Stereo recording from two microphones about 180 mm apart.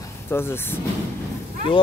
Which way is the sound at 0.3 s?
15° left (ahead or behind).